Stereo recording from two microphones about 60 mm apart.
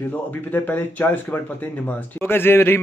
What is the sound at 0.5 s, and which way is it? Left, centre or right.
A man's voice, left.